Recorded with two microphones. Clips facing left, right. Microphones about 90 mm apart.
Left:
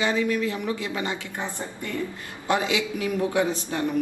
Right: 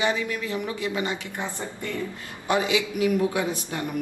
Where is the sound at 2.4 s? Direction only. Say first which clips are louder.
Right 1 dB; 20° right (ahead or behind).